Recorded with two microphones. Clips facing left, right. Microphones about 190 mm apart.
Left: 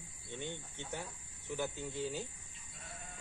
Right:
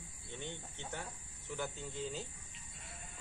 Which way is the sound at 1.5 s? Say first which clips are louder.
Left 3 dB; 15° left (ahead or behind).